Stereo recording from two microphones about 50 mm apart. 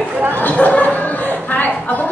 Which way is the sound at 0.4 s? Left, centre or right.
Left.